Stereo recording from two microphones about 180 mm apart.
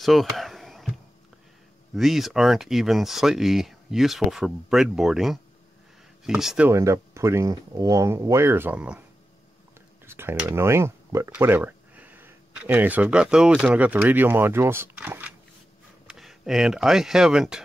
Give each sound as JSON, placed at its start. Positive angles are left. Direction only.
{"t": 0.0, "sound": "a sound", "side_deg": 0}
{"t": 2.0, "sound": "speech", "side_deg": 0}
{"t": 6.7, "sound": "speech", "side_deg": -15}
{"t": 10.0, "sound": "speech", "side_deg": -15}